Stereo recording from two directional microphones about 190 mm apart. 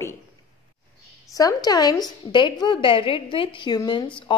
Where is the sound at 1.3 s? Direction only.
20° left (ahead or behind).